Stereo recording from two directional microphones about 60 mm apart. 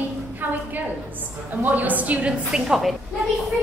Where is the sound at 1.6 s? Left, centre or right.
Right.